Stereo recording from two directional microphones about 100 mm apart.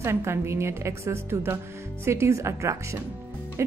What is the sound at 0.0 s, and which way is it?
A woman's voice, 25° right (ahead or behind).